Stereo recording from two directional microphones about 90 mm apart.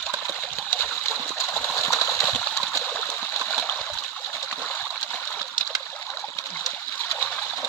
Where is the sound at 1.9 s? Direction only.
5° left (ahead or behind).